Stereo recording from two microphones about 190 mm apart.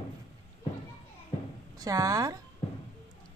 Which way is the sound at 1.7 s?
20° right (ahead or behind).